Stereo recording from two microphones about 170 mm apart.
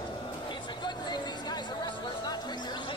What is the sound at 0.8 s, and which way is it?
Chatter, 25° left (ahead or behind).